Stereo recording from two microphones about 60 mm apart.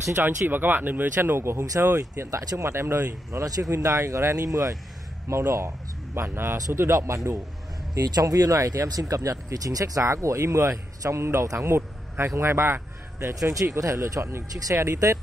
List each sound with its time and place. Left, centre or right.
0.0 s speech: right
5.3 s speech: right
7.9 s speech: right
13.7 s speech: right